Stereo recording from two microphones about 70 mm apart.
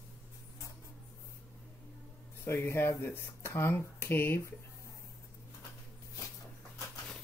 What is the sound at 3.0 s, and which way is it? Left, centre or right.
Speech, left.